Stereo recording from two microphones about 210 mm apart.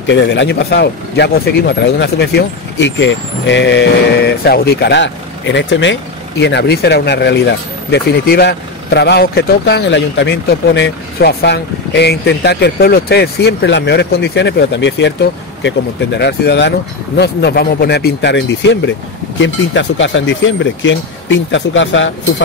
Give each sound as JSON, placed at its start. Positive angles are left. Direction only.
{"t": 0.0, "sound": "speech", "side_deg": 55}